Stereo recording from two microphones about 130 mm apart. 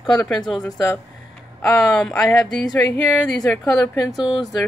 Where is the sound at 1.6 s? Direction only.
5° left (ahead or behind).